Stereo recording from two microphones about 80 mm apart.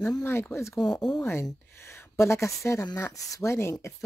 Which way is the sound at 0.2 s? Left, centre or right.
Left.